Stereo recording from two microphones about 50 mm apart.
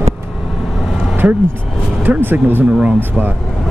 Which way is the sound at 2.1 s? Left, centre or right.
Right.